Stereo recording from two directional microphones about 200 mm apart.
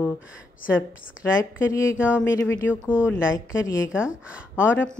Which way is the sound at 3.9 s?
5° right (ahead or behind).